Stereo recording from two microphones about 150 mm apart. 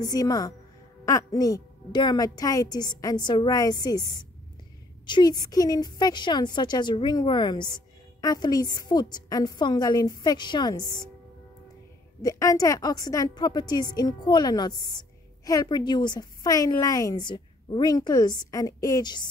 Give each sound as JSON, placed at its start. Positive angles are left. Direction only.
{"t": 0.0, "sound": "a woman's voice", "side_deg": 25}
{"t": 12.2, "sound": "a woman's voice", "side_deg": 20}